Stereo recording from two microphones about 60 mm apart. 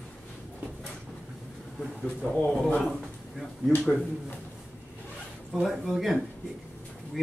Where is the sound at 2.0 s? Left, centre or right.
Left.